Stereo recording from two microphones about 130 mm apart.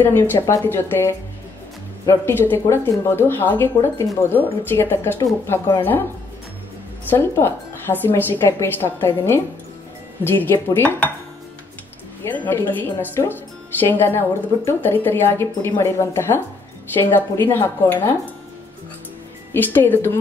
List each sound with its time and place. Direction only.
0.0 s speech: 15° left (ahead or behind)
7.1 s speech: 15° left (ahead or behind)
12.3 s speech: 15° left (ahead or behind)
19.5 s speech: 15° left (ahead or behind)